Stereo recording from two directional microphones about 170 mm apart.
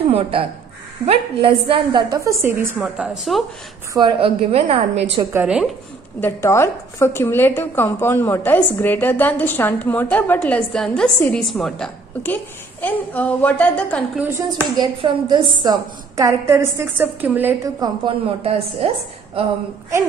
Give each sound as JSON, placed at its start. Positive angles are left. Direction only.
{"t": 0.1, "sound": "a woman's voice", "side_deg": -30}
{"t": 2.8, "sound": "a woman's voice", "side_deg": 0}
{"t": 3.9, "sound": "a woman's voice", "side_deg": -30}
{"t": 5.3, "sound": "a woman's voice", "side_deg": -10}
{"t": 6.2, "sound": "a woman's voice", "side_deg": 15}
{"t": 14.8, "sound": "a woman's voice", "side_deg": -25}
{"t": 17.7, "sound": "a woman's voice", "side_deg": -25}